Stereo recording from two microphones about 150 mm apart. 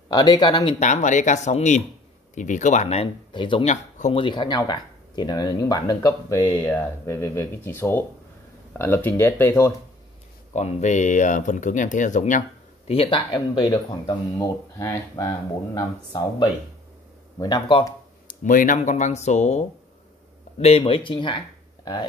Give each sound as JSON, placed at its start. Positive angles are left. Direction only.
{"t": 0.1, "sound": "speech", "side_deg": 25}
{"t": 0.7, "sound": "speech", "side_deg": 50}
{"t": 3.3, "sound": "speech", "side_deg": 35}
{"t": 3.6, "sound": "speech", "side_deg": 50}
{"t": 4.2, "sound": "speech", "side_deg": 30}
{"t": 10.5, "sound": "speech", "side_deg": 50}
{"t": 12.9, "sound": "speech", "side_deg": 35}
{"t": 14.8, "sound": "speech", "side_deg": 20}
{"t": 18.4, "sound": "speech", "side_deg": 60}